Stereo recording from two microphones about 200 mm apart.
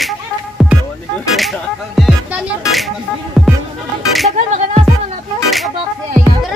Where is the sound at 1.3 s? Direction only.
Centre (ahead or behind).